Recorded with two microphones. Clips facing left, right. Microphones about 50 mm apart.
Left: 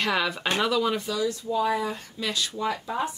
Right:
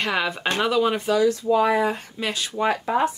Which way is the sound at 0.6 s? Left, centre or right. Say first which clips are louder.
Right 4 dB; centre.